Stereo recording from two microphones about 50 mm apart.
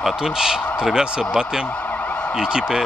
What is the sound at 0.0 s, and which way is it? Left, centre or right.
Speech, centre.